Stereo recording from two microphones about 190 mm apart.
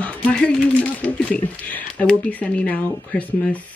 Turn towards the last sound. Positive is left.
turn(degrees=5)  # may be behind; listen again after turning